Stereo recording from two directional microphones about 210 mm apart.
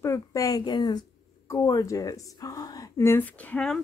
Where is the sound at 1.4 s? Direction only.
15° left (ahead or behind).